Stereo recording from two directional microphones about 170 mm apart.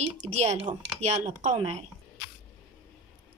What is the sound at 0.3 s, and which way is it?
Speech, 40° right (ahead or behind).